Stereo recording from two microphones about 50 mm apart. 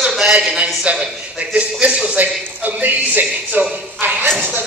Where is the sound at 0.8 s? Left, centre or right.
Right.